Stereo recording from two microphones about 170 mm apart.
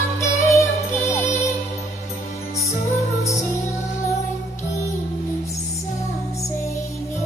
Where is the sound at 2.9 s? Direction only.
20° left (ahead or behind).